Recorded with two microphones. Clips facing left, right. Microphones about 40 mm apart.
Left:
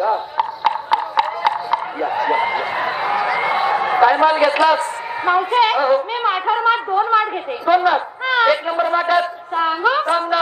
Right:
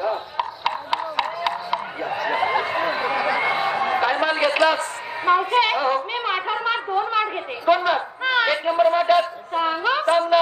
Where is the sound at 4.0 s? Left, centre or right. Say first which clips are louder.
Left 10 dB; centre.